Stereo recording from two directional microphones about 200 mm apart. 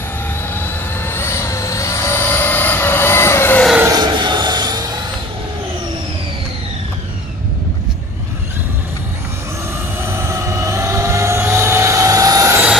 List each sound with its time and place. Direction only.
0.6 s vehicle: 10° left (ahead or behind)
3.7 s a sound: 15° right (ahead or behind)
10.1 s vehicle: 15° right (ahead or behind)